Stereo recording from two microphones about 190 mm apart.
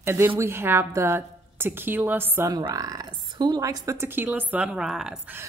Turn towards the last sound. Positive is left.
turn(degrees=-5)  # may be behind; listen again after turning